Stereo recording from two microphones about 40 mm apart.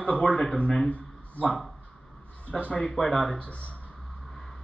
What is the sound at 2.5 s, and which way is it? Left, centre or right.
Speech, left.